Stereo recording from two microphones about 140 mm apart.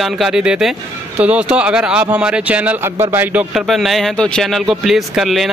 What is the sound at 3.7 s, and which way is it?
Speech, centre (ahead or behind).